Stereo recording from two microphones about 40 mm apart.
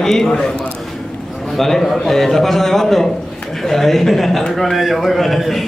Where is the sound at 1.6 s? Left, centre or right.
Centre.